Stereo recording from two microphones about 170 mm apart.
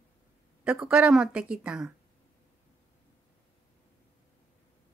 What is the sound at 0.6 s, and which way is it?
Speech, 5° right (ahead or behind).